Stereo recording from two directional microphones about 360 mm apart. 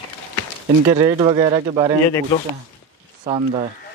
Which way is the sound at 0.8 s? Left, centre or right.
Centre.